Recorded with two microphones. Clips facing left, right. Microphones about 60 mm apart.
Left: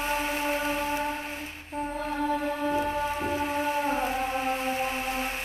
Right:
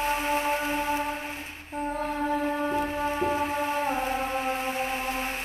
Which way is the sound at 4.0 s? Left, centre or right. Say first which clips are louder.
Even; centre.